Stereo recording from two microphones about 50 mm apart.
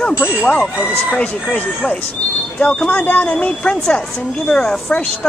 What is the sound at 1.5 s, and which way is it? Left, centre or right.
Speech, left.